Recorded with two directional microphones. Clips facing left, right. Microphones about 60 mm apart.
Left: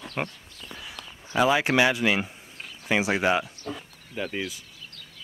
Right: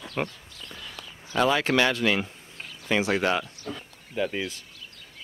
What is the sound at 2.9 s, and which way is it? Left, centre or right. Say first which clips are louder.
Speech: left 1 dB; centre.